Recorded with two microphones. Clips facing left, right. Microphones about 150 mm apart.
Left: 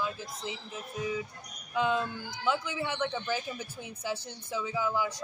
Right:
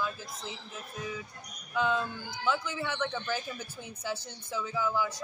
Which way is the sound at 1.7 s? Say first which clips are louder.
Left 1 dB; 20° left (ahead or behind).